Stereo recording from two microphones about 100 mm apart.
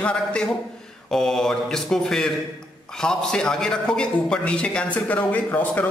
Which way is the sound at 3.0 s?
5° left (ahead or behind).